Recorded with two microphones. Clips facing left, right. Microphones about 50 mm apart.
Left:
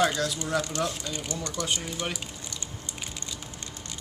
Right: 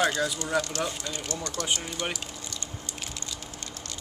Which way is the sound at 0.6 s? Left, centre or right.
Centre.